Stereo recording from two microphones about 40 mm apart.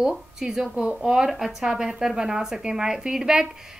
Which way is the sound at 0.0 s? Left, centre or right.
Centre.